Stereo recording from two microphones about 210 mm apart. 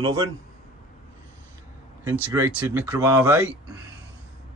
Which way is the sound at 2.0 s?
10° right (ahead or behind).